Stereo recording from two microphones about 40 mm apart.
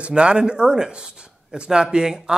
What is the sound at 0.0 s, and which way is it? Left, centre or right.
Speech, right.